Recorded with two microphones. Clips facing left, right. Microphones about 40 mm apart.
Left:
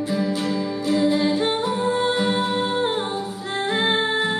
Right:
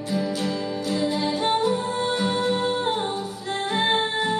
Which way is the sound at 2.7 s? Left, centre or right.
Centre.